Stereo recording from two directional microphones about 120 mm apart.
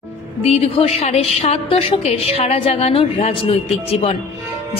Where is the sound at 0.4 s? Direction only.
60° left (ahead or behind).